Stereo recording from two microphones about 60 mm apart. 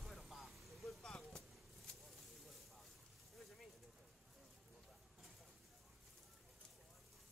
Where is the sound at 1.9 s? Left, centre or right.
Centre.